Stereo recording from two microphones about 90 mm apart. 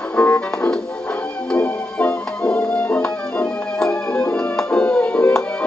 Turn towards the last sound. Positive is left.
turn(degrees=15)  # may be behind; listen again after turning